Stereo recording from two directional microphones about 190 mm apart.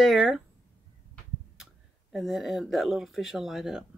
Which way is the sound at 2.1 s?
Centre (ahead or behind).